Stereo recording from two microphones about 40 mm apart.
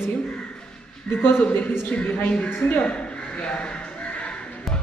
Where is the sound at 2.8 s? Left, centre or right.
Left.